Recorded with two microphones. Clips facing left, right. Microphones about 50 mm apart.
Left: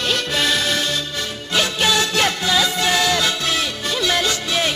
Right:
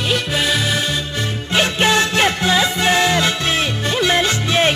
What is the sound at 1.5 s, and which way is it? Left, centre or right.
Music, right.